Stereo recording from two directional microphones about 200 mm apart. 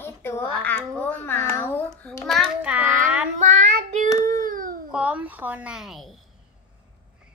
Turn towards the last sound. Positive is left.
turn(degrees=0)  # may be behind; listen again after turning